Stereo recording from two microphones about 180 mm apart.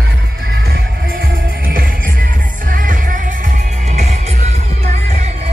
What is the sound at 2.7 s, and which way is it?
Music, 50° right (ahead or behind).